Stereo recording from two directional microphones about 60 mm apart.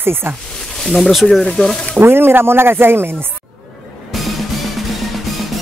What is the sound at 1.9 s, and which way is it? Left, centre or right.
Speech, right.